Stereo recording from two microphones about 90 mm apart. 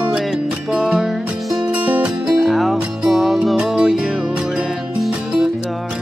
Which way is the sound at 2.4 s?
Centre (ahead or behind).